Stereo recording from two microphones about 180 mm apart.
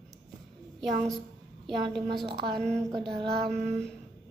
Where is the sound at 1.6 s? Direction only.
25° right (ahead or behind).